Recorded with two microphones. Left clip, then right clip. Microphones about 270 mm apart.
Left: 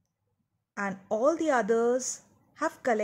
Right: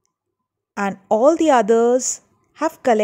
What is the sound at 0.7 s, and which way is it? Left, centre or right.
A woman's voice, right.